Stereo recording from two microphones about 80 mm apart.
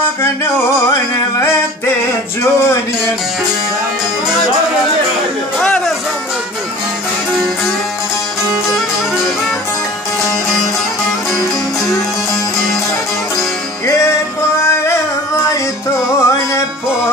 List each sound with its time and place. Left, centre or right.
0.2 s music: left
2.4 s a sound: left
5.6 s music: centre
13.8 s music: left